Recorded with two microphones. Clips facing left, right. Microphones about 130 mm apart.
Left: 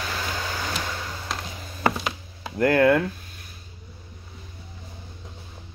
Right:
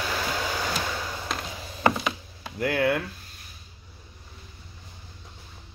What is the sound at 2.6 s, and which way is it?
Speech, 50° left (ahead or behind).